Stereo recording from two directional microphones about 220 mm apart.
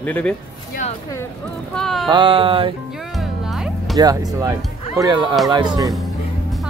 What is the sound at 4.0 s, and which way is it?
A man's voice, 15° right (ahead or behind).